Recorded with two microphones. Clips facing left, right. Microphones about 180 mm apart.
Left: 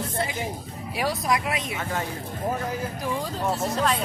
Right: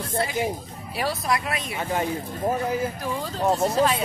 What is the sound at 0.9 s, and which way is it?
Speech, 15° left (ahead or behind).